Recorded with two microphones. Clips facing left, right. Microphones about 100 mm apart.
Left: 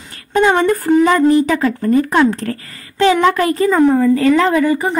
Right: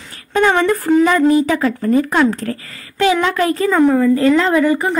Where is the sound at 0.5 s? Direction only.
45° left (ahead or behind).